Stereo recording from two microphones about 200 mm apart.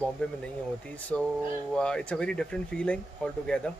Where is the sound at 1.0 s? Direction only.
5° left (ahead or behind).